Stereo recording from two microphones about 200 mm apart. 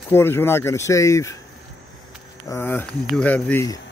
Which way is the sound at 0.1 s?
10° left (ahead or behind).